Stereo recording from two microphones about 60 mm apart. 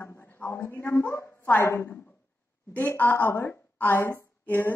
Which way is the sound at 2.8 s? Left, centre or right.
Left.